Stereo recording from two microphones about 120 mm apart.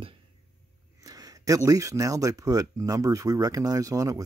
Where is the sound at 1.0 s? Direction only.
30° right (ahead or behind).